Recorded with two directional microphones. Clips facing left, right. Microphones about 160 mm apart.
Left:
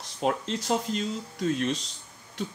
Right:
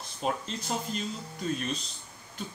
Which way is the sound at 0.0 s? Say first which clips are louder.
Left 4 dB; 90° left.